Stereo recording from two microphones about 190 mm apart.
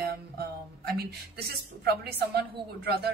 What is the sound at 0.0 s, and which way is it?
A woman's voice, 55° right (ahead or behind).